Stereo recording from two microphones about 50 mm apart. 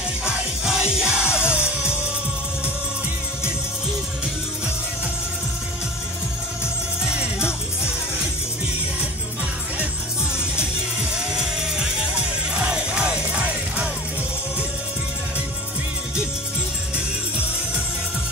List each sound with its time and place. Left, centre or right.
0.2 s music: centre
7.1 s music: centre
11.1 s music: centre